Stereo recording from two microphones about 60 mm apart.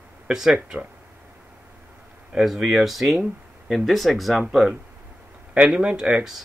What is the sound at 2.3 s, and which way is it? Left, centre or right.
Speech, centre.